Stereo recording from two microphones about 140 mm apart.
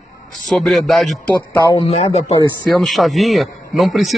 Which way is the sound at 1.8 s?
45° left (ahead or behind).